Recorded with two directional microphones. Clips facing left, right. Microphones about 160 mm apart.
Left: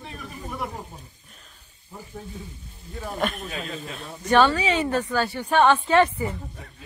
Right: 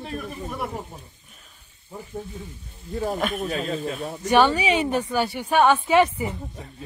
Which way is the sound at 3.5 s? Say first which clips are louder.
Right 7 dB; 35° right (ahead or behind).